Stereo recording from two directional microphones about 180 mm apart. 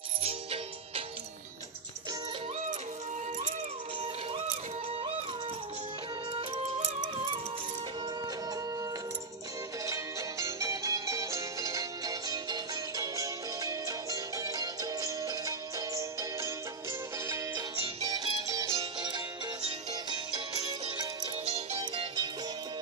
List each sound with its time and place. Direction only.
0.2 s music: 30° right (ahead or behind)
10.4 s music: 15° right (ahead or behind)
18.1 s music: 20° right (ahead or behind)
21.5 s music: 30° right (ahead or behind)